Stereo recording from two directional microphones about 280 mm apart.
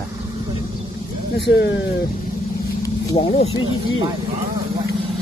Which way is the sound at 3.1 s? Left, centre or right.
Left.